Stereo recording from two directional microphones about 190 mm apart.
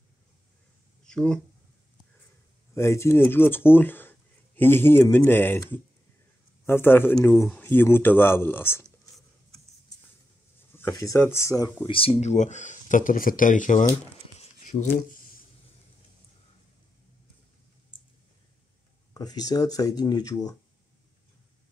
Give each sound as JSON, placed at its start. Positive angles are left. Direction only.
{"t": 1.0, "sound": "speech", "side_deg": 5}
{"t": 2.7, "sound": "speech", "side_deg": 15}
{"t": 10.7, "sound": "speech", "side_deg": 15}
{"t": 14.4, "sound": "a sound", "side_deg": 40}
{"t": 19.1, "sound": "speech", "side_deg": 20}